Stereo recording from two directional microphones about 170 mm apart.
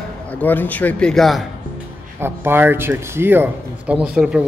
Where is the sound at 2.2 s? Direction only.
15° right (ahead or behind).